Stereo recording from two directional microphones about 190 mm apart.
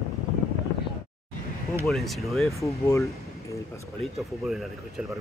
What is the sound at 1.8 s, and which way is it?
Speech, centre (ahead or behind).